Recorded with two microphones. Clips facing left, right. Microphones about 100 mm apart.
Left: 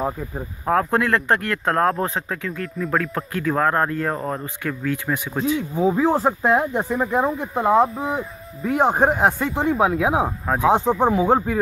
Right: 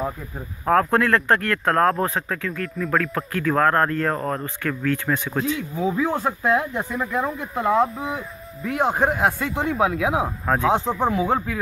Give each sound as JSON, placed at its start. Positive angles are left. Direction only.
{"t": 0.7, "sound": "speech", "side_deg": 20}
{"t": 5.8, "sound": "speech", "side_deg": 30}
{"t": 9.2, "sound": "speech", "side_deg": 25}
{"t": 10.4, "sound": "speech", "side_deg": 15}